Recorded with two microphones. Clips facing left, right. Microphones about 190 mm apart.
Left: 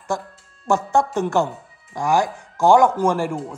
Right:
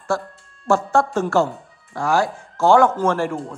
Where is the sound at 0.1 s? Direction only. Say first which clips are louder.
Right 1 dB; 15° left (ahead or behind).